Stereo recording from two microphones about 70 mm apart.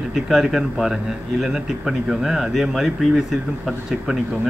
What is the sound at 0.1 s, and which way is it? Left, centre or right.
Speech, centre.